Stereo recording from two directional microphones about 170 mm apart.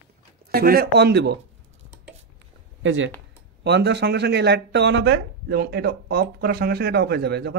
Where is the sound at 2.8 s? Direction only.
90° right.